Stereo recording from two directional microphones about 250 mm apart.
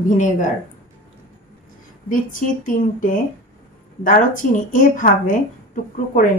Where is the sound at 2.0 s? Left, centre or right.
Left.